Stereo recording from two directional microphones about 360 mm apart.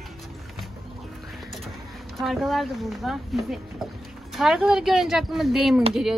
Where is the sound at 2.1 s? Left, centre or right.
Centre.